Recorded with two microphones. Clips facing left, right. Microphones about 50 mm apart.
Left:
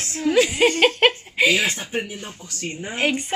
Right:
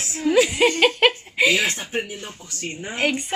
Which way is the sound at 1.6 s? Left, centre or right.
Centre.